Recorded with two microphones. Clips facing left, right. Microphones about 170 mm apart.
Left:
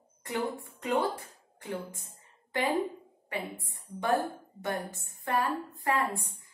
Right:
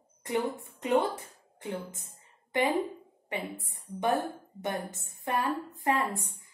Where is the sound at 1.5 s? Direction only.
20° right (ahead or behind).